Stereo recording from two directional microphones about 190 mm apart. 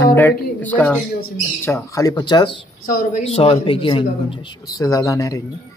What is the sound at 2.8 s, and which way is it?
Speech, 45° left (ahead or behind).